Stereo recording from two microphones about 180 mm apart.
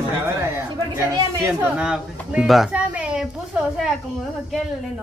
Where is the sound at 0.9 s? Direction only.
15° right (ahead or behind).